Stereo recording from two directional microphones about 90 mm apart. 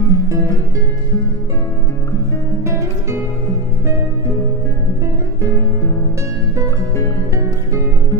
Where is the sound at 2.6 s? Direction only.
30° right (ahead or behind).